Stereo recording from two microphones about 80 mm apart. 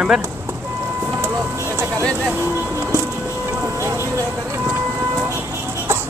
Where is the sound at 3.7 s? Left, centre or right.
Right.